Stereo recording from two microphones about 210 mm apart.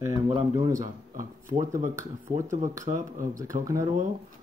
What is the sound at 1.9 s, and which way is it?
Speech, 15° right (ahead or behind).